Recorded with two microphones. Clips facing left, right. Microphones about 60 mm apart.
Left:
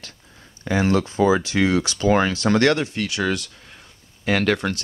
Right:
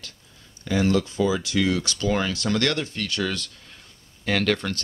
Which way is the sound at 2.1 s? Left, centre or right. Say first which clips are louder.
Left 6 dB; left.